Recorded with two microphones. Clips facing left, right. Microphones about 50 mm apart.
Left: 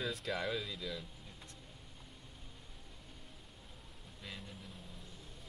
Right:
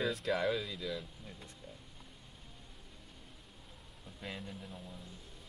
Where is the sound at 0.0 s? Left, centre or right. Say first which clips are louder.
Right 5 dB; centre.